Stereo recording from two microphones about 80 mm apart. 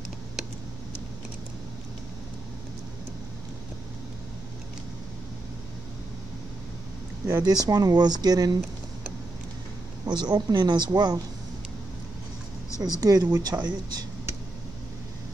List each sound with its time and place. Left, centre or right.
7.2 s speech: right
10.0 s speech: right
12.7 s speech: right